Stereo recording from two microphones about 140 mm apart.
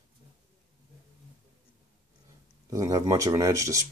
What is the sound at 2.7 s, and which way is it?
Speech, 25° right (ahead or behind).